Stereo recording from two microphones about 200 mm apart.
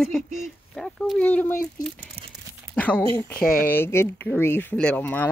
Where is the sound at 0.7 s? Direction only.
Centre (ahead or behind).